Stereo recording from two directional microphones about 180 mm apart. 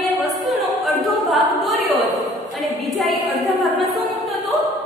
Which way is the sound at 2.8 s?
Centre (ahead or behind).